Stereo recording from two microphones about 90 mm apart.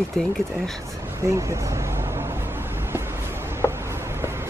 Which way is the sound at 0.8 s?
30° right (ahead or behind).